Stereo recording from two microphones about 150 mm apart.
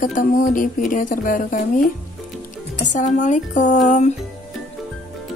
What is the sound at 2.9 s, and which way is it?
Speech, 55° left (ahead or behind).